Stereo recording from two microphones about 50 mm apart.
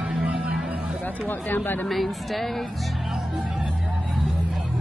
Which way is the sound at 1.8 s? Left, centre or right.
Centre.